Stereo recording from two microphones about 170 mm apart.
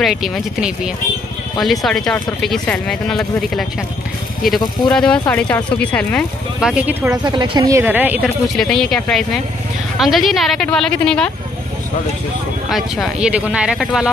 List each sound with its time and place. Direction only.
0.0 s speech: centre (ahead or behind)
4.9 s speech: 5° left (ahead or behind)
6.7 s speech: 10° right (ahead or behind)
7.2 s speech: 25° right (ahead or behind)
7.8 s speech: 10° right (ahead or behind)
8.5 s speech: centre (ahead or behind)
12.6 s speech: centre (ahead or behind)